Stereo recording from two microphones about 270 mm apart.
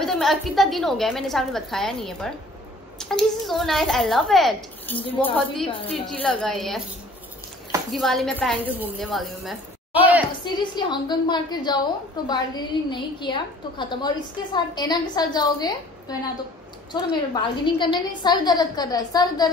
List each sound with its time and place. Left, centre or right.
0.0 s a woman's voice: centre
5.7 s a woman's voice: centre
6.0 s a woman's voice: centre
7.9 s a woman's voice: centre
10.4 s a woman's voice: centre